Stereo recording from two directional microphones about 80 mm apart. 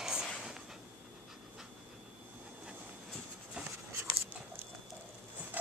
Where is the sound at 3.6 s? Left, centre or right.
Centre.